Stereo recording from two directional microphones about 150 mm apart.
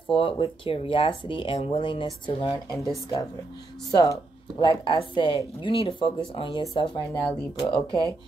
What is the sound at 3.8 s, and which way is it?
Speech, 25° left (ahead or behind).